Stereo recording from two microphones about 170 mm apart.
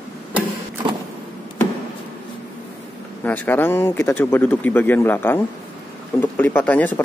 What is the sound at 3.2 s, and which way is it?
A man's voice, 10° left (ahead or behind).